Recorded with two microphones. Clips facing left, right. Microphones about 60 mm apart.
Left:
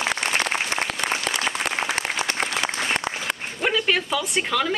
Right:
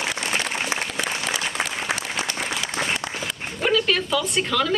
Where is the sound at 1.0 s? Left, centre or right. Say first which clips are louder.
Left 2 dB; left.